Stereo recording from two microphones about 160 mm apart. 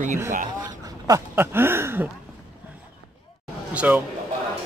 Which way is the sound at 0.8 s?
25° right (ahead or behind).